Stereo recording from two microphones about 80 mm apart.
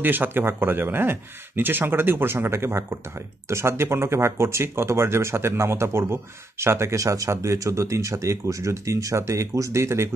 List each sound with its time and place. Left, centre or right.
0.0 s speech: right